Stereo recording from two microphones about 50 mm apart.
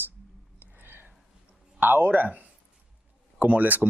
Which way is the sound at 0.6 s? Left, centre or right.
Right.